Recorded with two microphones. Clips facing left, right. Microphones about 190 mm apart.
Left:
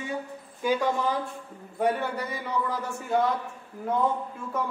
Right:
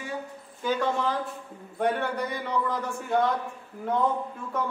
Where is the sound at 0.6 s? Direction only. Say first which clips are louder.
Left 1 dB; 10° left (ahead or behind).